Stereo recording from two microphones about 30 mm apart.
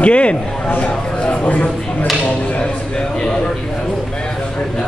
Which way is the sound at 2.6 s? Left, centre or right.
Left.